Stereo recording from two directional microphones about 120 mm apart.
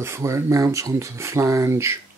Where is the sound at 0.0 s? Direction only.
25° right (ahead or behind).